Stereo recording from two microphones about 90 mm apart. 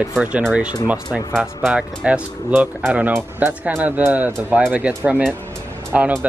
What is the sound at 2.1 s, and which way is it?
Speech, 15° right (ahead or behind).